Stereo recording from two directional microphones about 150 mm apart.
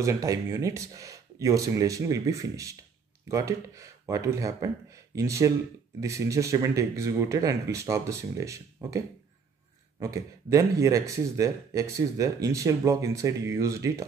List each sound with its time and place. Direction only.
0.0 s speech: 20° right (ahead or behind)